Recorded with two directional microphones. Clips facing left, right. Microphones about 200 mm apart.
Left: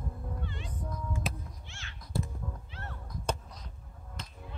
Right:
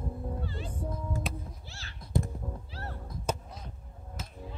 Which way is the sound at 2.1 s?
20° right (ahead or behind).